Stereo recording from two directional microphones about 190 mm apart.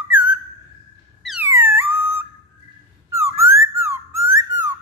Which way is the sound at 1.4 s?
10° right (ahead or behind).